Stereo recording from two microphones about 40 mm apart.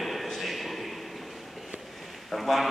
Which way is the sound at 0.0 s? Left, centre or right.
Centre.